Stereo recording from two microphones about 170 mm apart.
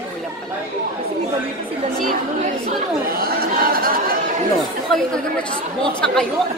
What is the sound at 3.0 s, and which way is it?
Speech, 60° right (ahead or behind).